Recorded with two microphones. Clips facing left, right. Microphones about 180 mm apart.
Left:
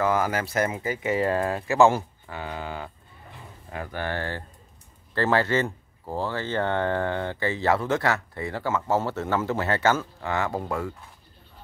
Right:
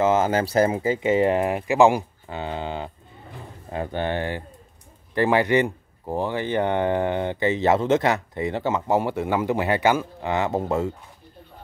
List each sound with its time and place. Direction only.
0.0 s speech: 25° right (ahead or behind)